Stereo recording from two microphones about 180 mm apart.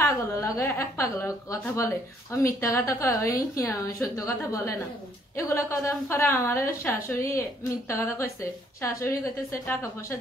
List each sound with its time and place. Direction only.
0.0 s a woman's voice: 15° left (ahead or behind)